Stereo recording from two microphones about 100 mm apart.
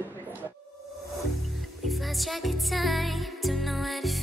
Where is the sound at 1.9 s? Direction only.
Centre (ahead or behind).